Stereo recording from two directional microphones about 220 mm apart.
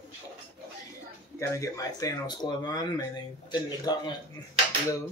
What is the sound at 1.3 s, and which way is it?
Speech, 15° left (ahead or behind).